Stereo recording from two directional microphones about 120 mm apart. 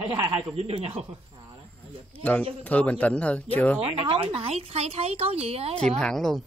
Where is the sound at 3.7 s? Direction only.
55° right (ahead or behind).